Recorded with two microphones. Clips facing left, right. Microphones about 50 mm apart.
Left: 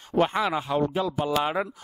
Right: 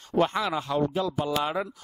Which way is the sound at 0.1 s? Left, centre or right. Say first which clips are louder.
Left 1 dB; centre.